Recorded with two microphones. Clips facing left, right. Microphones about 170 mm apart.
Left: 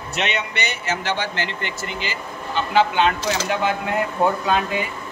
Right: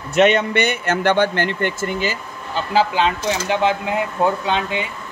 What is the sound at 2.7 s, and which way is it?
Speech, 30° right (ahead or behind).